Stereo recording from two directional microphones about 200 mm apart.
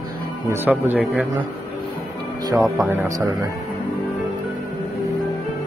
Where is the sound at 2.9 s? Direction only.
15° right (ahead or behind).